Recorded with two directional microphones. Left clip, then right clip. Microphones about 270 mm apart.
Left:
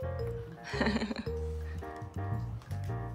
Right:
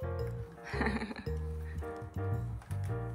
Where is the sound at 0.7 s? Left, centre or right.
Centre.